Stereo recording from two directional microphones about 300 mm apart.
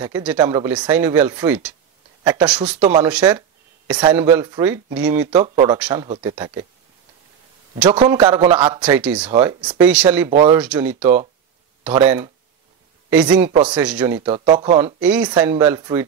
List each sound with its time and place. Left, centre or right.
0.0 s speech: centre
5.8 s speech: centre
6.0 s speech: centre
7.9 s speech: centre
14.3 s speech: right
15.0 s speech: centre